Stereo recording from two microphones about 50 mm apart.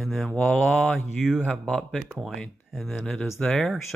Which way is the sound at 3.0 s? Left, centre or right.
Centre.